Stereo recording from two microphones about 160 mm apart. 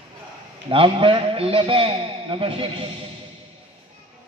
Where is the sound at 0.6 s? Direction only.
30° right (ahead or behind).